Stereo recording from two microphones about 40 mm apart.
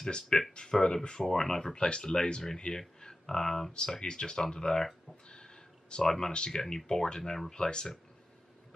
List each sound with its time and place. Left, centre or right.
0.0 s speech: centre
1.8 s speech: left
5.3 s a sound: centre
6.0 s speech: centre